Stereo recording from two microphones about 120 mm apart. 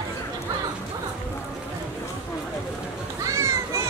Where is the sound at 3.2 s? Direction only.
25° right (ahead or behind).